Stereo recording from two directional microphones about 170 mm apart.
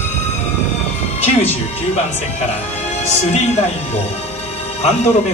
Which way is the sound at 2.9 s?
40° left (ahead or behind).